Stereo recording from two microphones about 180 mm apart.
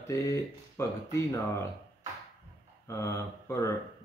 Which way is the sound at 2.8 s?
15° left (ahead or behind).